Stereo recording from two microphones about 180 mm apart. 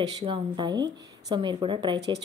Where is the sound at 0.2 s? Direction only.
25° right (ahead or behind).